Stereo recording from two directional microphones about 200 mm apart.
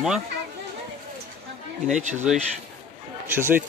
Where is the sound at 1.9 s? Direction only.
35° right (ahead or behind).